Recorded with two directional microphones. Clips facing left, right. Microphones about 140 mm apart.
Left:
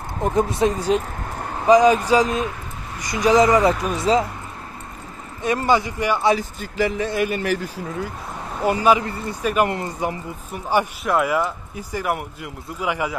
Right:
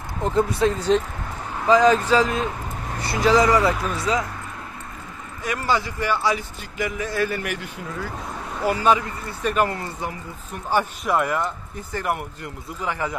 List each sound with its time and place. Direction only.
0.2 s speech: 15° left (ahead or behind)
5.4 s speech: 25° left (ahead or behind)
6.3 s speech: 35° left (ahead or behind)
7.2 s speech: 20° left (ahead or behind)
7.4 s speech: 35° left (ahead or behind)
8.6 s speech: 15° left (ahead or behind)